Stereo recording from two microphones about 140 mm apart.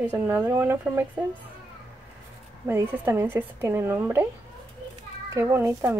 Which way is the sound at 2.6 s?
15° right (ahead or behind).